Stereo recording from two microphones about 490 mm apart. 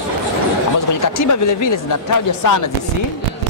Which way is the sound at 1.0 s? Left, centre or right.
Left.